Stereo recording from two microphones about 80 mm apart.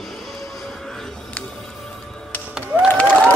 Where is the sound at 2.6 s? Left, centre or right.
Centre.